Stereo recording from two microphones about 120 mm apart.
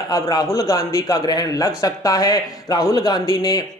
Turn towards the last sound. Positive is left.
turn(degrees=30)  # may be behind; listen again after turning